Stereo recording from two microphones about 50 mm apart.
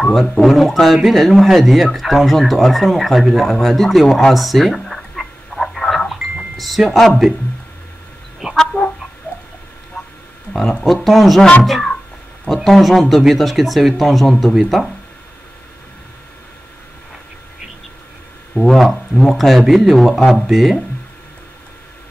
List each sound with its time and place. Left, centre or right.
0.0 s speech: centre
3.6 s a sound: centre
8.4 s chicken: centre
9.3 s a sound: left
10.8 s speech: centre
18.5 s speech: centre
18.8 s speech: centre